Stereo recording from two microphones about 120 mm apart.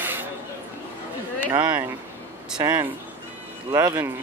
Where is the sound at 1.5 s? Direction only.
35° right (ahead or behind).